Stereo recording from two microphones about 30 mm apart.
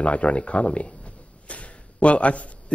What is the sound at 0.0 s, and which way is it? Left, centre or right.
A man's voice, left.